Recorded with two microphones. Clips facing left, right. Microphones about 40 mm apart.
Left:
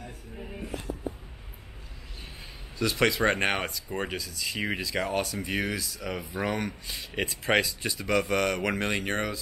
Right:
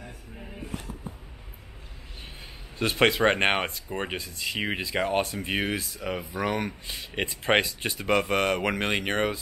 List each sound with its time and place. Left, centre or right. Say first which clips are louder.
2.8 s speech: right 3 dB; right; by 7.1 s centre
7.2 s speech: right 2 dB; right
8.2 s speech: left 1 dB; right